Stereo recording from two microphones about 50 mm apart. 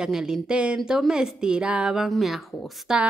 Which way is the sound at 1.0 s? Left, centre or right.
Centre.